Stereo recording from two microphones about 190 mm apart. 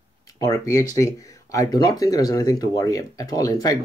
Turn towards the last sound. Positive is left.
turn(degrees=20)  # may be behind; listen again after turning